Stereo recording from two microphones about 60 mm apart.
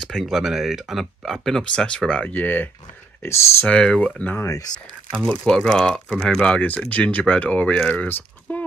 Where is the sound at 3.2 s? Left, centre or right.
Left.